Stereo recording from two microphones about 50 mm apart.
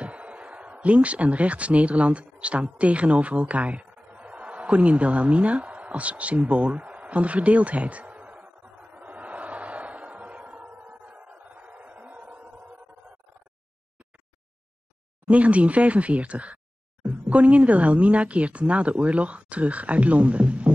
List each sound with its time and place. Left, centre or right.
0.0 s speech: right
8.9 s a sound: right
15.2 s a woman's voice: right